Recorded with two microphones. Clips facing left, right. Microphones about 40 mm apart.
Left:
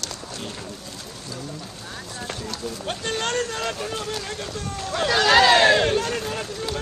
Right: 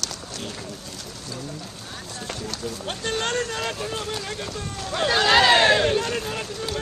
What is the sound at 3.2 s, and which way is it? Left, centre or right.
Vehicle, right.